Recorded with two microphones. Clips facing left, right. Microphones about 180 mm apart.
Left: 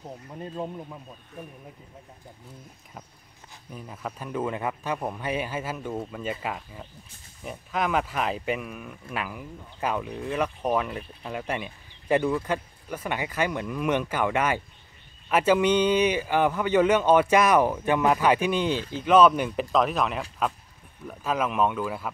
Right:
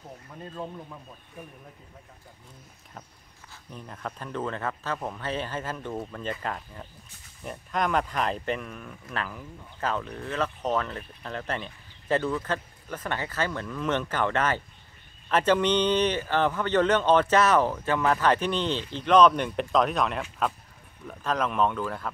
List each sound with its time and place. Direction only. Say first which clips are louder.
0.3 s speech: left 3 dB; 20° left (ahead or behind)
3.7 s speech: left 1 dB; 5° left (ahead or behind)